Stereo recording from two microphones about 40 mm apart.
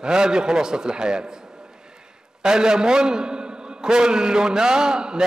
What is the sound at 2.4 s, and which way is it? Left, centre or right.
A man's voice, centre.